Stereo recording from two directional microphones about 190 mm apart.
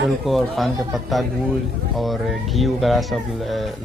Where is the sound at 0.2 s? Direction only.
Centre (ahead or behind).